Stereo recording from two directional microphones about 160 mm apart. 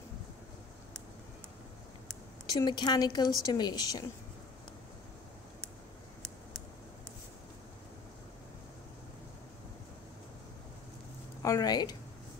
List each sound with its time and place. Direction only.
2.5 s a woman's voice: 25° left (ahead or behind)
11.4 s a woman's voice: 25° left (ahead or behind)